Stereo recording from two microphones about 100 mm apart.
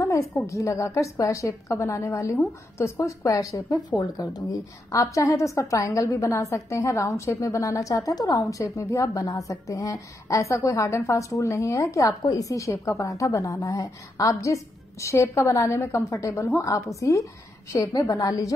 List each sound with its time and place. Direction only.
0.0 s a sound: 30° left (ahead or behind)
0.5 s a woman's voice: 30° left (ahead or behind)
12.1 s a woman's voice: 40° left (ahead or behind)